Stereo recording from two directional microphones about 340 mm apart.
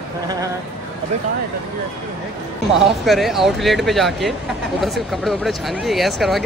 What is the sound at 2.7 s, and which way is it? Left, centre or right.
Speech, centre.